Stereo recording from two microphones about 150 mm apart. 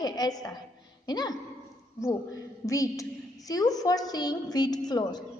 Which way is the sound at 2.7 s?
20° left (ahead or behind).